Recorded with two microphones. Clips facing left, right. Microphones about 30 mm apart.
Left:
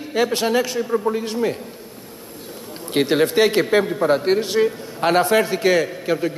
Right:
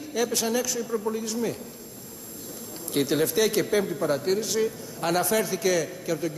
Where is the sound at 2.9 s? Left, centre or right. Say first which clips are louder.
Left 7 dB; left.